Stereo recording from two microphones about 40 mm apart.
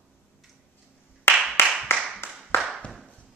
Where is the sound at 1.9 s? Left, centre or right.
Left.